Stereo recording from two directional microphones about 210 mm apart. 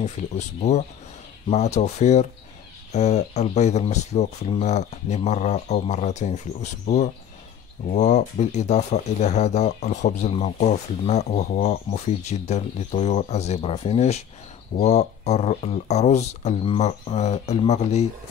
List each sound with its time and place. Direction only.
0.2 s speech: 40° left (ahead or behind)